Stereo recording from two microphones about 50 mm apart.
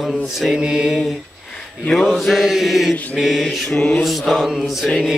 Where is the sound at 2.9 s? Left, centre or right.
Left.